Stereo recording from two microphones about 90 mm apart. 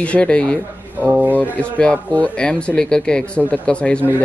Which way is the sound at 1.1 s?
20° right (ahead or behind).